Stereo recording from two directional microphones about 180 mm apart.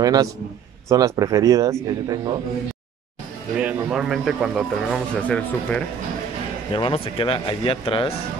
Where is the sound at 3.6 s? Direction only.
5° right (ahead or behind).